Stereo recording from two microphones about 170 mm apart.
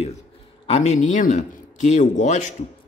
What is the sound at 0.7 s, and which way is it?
Speech, 40° left (ahead or behind).